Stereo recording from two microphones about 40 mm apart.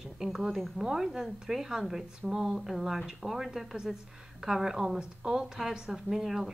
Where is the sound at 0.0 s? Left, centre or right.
Centre.